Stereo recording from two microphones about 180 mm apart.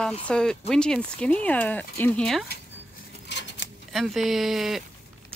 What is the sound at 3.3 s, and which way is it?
Scissors, 80° left.